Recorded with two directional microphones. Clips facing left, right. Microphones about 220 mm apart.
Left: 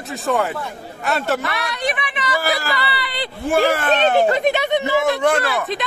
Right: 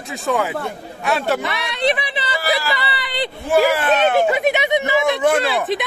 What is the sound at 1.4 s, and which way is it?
Speech, 25° right (ahead or behind).